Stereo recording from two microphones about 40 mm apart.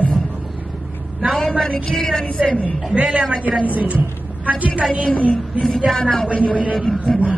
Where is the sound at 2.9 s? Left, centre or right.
Right.